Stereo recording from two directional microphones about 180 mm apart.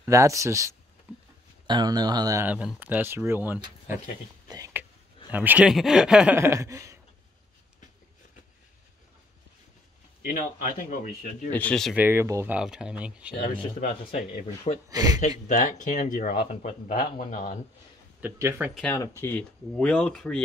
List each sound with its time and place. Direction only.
0.0 s speech: 15° right (ahead or behind)
4.5 s a sound: 20° right (ahead or behind)
5.3 s speech: 10° right (ahead or behind)
10.2 s speech: 45° left (ahead or behind)
11.5 s speech: 5° left (ahead or behind)
12.0 s speech: 10° right (ahead or behind)
13.5 s speech: 30° left (ahead or behind)
13.8 s speech: 45° left (ahead or behind)
14.9 s a man's voice: 20° right (ahead or behind)
15.1 s speech: 40° left (ahead or behind)
18.2 s speech: 10° right (ahead or behind)
18.8 s speech: 10° left (ahead or behind)